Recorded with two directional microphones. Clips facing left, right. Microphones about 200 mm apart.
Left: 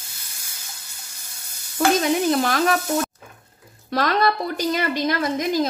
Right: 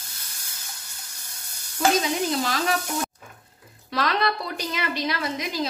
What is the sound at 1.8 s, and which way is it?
Sizzle, 65° left (ahead or behind).